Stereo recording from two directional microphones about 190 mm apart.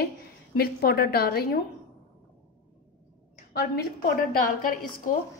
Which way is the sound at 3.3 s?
55° left (ahead or behind).